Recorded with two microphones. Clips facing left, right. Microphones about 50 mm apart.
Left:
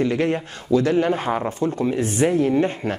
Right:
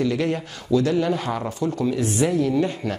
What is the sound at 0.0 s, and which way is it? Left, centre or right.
Speech, left.